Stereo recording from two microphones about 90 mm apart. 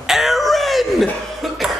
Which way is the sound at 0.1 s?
5° right (ahead or behind).